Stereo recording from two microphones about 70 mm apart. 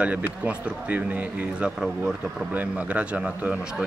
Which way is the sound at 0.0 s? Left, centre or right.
Centre.